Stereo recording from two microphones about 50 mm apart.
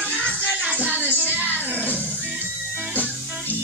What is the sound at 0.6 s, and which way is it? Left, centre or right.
Music, right.